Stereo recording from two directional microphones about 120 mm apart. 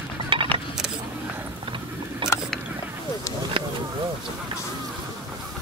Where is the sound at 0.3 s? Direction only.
45° right (ahead or behind).